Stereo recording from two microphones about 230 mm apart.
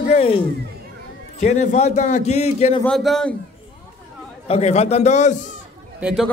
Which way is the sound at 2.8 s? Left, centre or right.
Centre.